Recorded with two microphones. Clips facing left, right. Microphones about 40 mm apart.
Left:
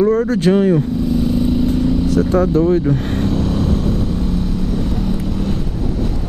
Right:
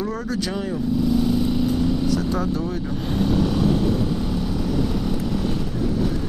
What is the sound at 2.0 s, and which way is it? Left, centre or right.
Speech, left.